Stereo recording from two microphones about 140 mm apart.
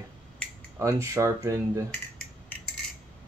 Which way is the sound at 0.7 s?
20° right (ahead or behind).